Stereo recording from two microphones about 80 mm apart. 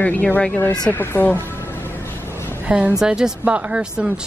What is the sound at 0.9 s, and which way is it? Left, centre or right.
Speech, left.